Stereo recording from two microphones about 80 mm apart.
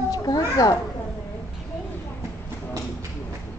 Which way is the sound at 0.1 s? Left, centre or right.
Left.